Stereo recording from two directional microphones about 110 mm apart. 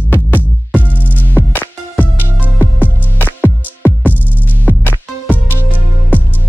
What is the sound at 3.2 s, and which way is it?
Music, 15° left (ahead or behind).